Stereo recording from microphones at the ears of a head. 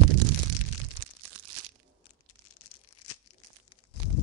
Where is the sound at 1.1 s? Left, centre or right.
Right.